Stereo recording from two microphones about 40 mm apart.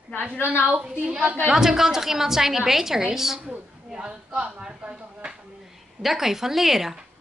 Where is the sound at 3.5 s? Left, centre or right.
Right.